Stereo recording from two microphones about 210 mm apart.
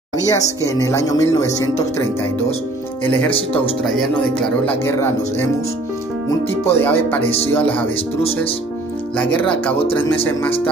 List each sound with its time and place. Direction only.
0.3 s speech: 15° left (ahead or behind)
3.3 s speech: 25° left (ahead or behind)
3.8 s speech: centre (ahead or behind)
4.6 s speech: 10° left (ahead or behind)
6.6 s speech: 10° left (ahead or behind)
9.4 s speech: 5° left (ahead or behind)